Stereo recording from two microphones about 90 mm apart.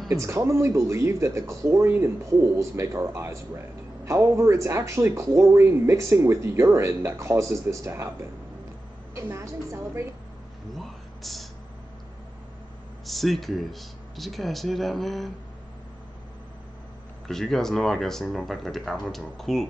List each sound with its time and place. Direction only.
0.1 s speech: 30° right (ahead or behind)
10.7 s a sound: centre (ahead or behind)
13.0 s speech: centre (ahead or behind)
17.3 s speech: 5° left (ahead or behind)